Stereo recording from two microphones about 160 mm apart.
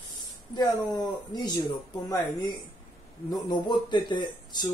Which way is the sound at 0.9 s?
25° left (ahead or behind).